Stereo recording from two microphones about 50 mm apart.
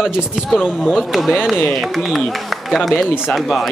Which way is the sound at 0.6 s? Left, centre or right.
Centre.